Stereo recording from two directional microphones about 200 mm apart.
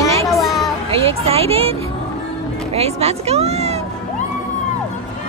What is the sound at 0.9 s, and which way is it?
Speech, 30° right (ahead or behind).